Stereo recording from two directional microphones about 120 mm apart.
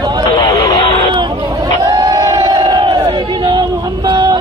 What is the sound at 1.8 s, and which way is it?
Crowd, 30° right (ahead or behind).